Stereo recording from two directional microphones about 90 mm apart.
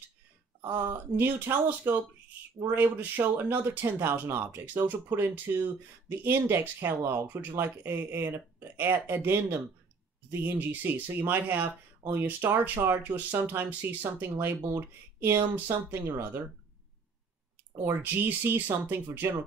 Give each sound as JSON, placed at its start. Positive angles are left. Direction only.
{"t": 0.7, "sound": "speech", "side_deg": -25}
{"t": 17.7, "sound": "speech", "side_deg": -25}